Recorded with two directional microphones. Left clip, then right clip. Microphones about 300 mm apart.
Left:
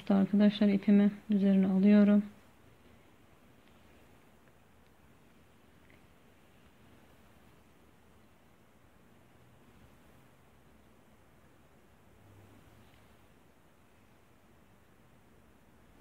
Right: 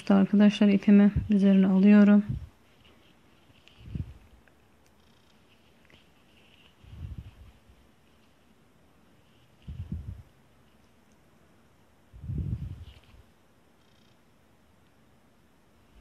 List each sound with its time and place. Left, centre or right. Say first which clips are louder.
0.0 s speech: right 5 dB; centre